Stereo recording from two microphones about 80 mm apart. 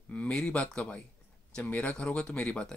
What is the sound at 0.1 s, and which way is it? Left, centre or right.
Speech, centre.